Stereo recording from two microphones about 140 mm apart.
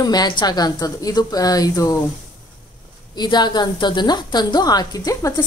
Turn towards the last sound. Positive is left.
turn(degrees=25)  # may be behind; listen again after turning